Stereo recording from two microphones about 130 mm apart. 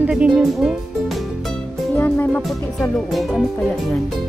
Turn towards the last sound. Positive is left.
turn(degrees=0)  # may be behind; listen again after turning